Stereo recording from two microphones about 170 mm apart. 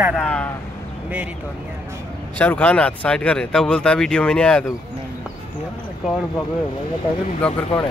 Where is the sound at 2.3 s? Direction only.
10° left (ahead or behind).